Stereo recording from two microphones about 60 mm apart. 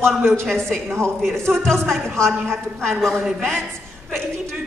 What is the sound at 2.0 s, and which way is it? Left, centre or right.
Speech, right.